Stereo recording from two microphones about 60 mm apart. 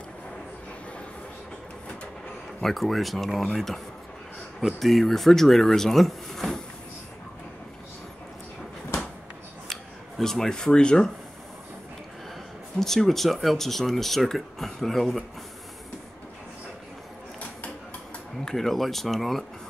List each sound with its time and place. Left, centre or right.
2.6 s speech: centre
9.7 s scissors: centre
12.7 s speech: centre
18.4 s speech: centre